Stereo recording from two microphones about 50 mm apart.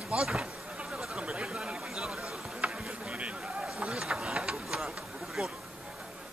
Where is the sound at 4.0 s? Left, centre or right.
Centre.